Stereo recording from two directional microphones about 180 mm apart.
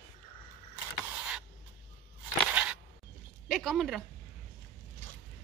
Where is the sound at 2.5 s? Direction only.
5° right (ahead or behind).